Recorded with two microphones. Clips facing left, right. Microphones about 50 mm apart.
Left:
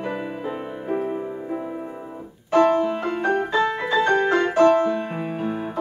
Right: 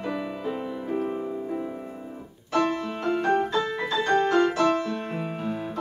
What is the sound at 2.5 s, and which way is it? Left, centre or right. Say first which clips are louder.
Music: left 8 dB; left.